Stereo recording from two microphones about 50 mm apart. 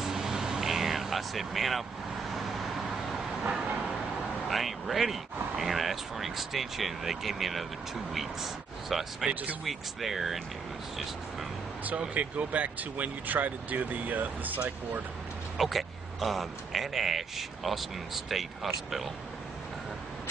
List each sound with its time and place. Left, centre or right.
0.0 s vehicle: centre
4.5 s speech: centre
9.3 s speech: right
9.7 s speech: centre
12.1 s speech: right
15.5 s speech: centre